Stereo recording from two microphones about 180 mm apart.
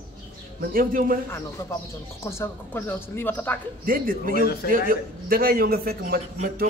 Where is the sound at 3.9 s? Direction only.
50° right (ahead or behind).